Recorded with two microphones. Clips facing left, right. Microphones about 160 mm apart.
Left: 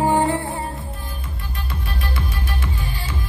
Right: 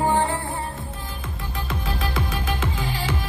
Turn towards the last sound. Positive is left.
turn(degrees=-90)